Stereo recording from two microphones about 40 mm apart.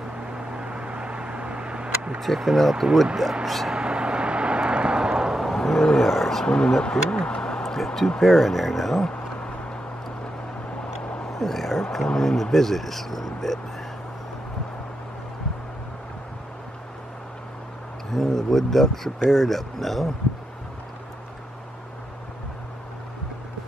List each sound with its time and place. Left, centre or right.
0.5 s vehicle: right
2.1 s speech: centre
3.7 s vehicle: right
5.4 s vehicle: centre
5.9 s speech: centre
6.4 s speech: left; by 9.0 s centre
11.3 s speech: centre
18.1 s speech: centre